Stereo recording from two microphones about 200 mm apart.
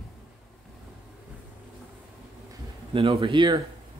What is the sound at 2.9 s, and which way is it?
Speech, 30° right (ahead or behind).